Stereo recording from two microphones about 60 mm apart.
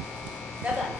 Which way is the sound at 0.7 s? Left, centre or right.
Centre.